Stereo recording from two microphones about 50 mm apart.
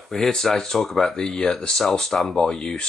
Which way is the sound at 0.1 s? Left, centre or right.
Centre.